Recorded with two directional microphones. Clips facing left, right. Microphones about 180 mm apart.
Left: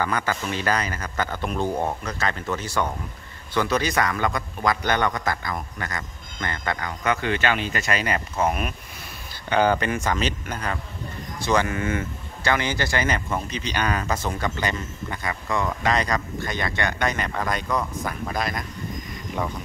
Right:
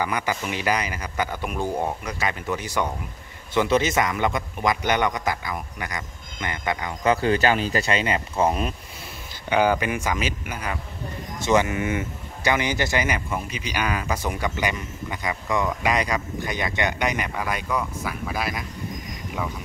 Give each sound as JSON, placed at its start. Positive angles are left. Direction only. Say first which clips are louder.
{"t": 0.0, "sound": "speech", "louder": "even", "side_deg": -15}
{"t": 7.0, "sound": "speech", "louder": "right 5 dB", "side_deg": -35}
{"t": 9.5, "sound": "speech", "louder": "even", "side_deg": -10}